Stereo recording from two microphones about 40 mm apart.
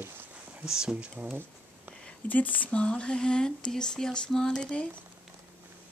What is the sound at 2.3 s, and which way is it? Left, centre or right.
Speech, left.